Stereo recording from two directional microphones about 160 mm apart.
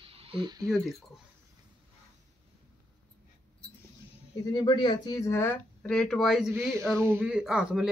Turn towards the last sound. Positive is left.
turn(degrees=-5)  # may be behind; listen again after turning